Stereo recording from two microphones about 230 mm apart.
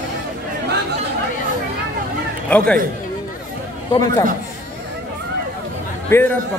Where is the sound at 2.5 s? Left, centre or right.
Centre.